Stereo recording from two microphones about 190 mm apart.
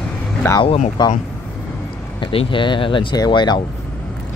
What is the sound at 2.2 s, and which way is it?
Speech, 25° left (ahead or behind).